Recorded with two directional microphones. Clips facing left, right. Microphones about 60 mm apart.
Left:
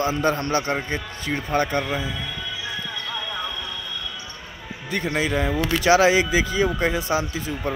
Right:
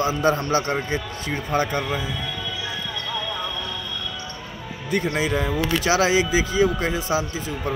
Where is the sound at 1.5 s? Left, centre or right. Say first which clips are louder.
Left 1 dB; centre.